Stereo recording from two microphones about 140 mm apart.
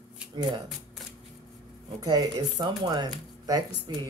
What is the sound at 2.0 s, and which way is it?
Speech, 30° right (ahead or behind).